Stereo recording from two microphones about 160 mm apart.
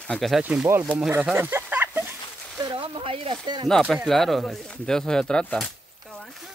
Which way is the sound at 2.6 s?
30° right (ahead or behind).